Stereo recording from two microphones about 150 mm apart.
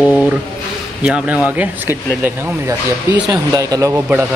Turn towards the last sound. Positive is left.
turn(degrees=-25)  # may be behind; listen again after turning